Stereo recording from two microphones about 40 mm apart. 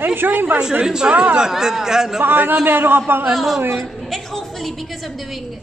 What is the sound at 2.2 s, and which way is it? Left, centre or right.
A man's voice, right.